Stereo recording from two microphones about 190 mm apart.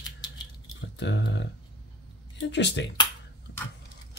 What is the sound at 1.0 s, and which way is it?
Speech, 70° left (ahead or behind).